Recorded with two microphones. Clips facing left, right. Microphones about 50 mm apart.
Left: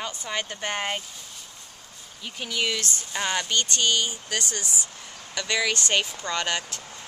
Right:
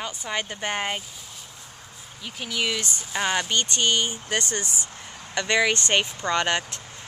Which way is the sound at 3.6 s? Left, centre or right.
Right.